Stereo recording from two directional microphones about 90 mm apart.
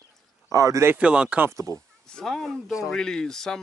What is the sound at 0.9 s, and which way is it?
Speech, 10° right (ahead or behind).